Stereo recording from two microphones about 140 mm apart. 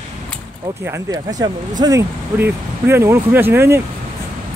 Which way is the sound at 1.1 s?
25° right (ahead or behind).